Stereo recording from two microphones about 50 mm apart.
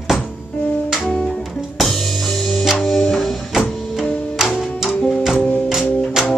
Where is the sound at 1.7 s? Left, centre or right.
Centre.